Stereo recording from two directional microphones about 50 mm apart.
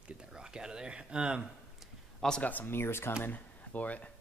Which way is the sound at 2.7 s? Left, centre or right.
Left.